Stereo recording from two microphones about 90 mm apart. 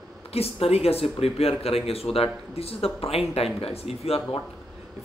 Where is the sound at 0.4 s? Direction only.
90° left.